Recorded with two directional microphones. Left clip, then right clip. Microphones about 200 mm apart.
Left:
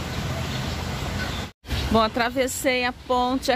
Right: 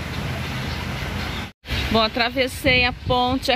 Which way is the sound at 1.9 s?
5° left (ahead or behind).